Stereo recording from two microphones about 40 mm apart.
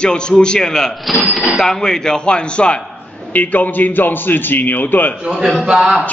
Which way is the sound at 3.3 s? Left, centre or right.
Left.